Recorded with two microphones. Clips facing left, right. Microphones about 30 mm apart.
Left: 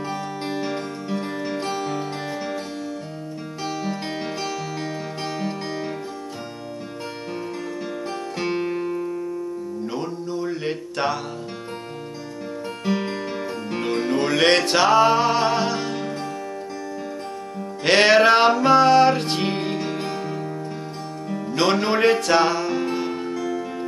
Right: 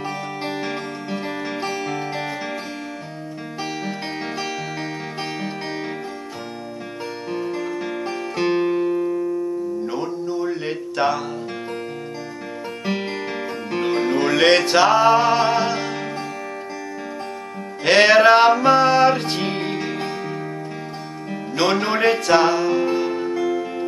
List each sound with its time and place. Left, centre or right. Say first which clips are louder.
0.5 s music: left 1 dB; right
5.4 s music: even; centre
7.3 s music: right 6 dB; centre
9.8 s music: right 3 dB; centre
12.8 s music: even; right
17.8 s music: right 2 dB; centre
21.5 s music: even; centre
23.3 s music: right 4 dB; centre